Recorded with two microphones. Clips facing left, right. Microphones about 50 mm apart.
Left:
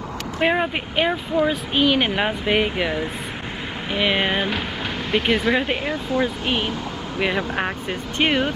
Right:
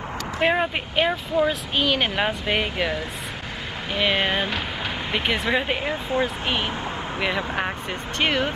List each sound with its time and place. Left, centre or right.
0.4 s speech: centre
6.1 s speech: right
7.2 s speech: centre
8.2 s speech: centre